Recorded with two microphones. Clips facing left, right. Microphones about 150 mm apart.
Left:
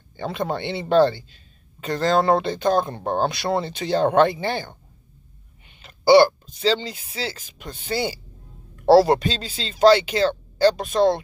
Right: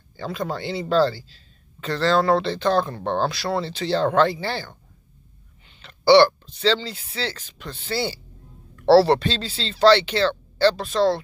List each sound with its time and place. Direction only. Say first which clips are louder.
0.2 s speech: left 2 dB; 25° left (ahead or behind)
3.0 s speech: left 1 dB; 40° left (ahead or behind)
3.3 s speech: left 2 dB; 20° left (ahead or behind)